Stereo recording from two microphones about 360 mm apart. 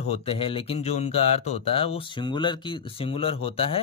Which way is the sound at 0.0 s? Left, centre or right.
Centre.